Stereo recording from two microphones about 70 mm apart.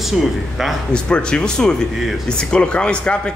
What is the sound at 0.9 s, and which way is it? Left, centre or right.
A man's voice, centre.